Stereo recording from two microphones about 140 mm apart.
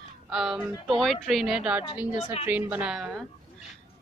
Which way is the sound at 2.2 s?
45° left (ahead or behind).